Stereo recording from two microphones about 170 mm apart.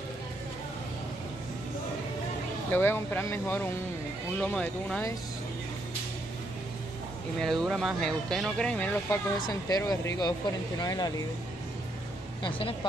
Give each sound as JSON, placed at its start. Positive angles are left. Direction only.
{"t": 2.7, "sound": "speech", "side_deg": 15}
{"t": 7.4, "sound": "speech", "side_deg": 0}
{"t": 9.5, "sound": "speech", "side_deg": 20}
{"t": 12.4, "sound": "speech", "side_deg": 30}